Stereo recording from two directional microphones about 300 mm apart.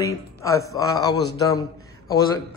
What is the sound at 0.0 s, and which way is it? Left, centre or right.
A man's voice, centre.